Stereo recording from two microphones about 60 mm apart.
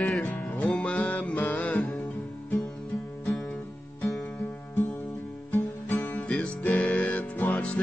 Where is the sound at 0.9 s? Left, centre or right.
Left.